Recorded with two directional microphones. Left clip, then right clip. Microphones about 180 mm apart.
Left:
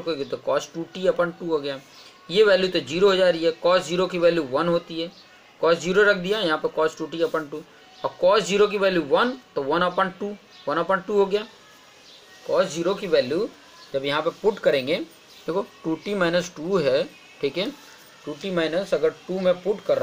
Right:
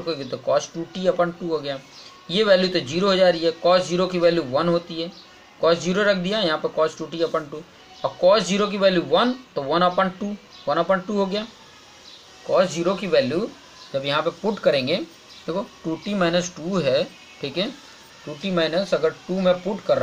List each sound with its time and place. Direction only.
0.0 s speech: 40° left (ahead or behind)
12.4 s speech: 30° left (ahead or behind)